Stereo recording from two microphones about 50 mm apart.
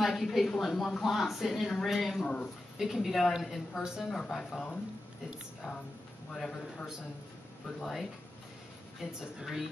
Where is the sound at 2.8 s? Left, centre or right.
Centre.